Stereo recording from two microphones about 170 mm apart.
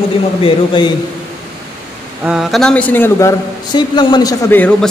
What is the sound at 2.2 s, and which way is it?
A man's voice, centre (ahead or behind).